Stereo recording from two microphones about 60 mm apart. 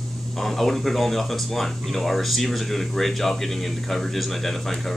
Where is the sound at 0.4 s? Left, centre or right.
Centre.